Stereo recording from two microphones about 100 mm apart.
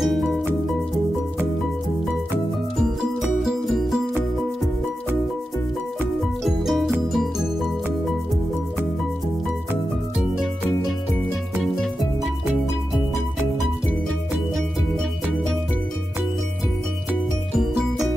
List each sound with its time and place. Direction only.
0.0 s music: centre (ahead or behind)
2.8 s music: 5° right (ahead or behind)
6.4 s music: centre (ahead or behind)
17.6 s music: 5° right (ahead or behind)